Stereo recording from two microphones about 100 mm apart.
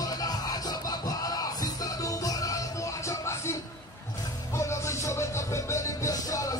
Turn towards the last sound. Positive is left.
turn(degrees=35)  # may be behind; listen again after turning